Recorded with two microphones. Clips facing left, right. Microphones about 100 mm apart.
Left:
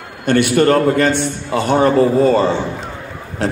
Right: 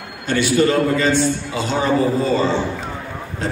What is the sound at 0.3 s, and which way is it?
A man's voice, 60° left (ahead or behind).